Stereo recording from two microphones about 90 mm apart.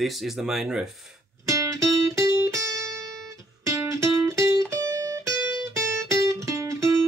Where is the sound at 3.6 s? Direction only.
35° right (ahead or behind).